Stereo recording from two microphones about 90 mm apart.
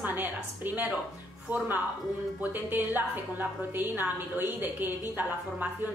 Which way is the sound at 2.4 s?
20° right (ahead or behind).